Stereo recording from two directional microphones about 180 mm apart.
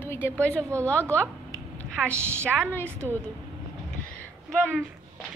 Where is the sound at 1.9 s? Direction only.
5° left (ahead or behind).